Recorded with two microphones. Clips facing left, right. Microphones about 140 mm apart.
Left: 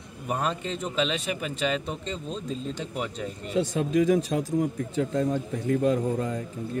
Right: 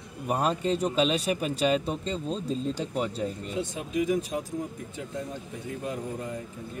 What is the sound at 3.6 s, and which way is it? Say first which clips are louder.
Speech: left 6 dB; 90° left.